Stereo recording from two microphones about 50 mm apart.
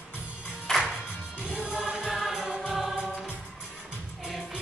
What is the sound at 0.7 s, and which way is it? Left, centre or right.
Music, centre.